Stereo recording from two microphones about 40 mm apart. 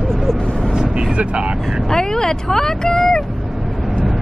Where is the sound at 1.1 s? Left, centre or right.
Right.